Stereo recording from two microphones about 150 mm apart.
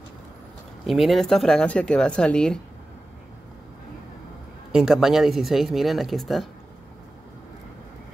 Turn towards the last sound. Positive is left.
turn(degrees=0)  # may be behind; listen again after turning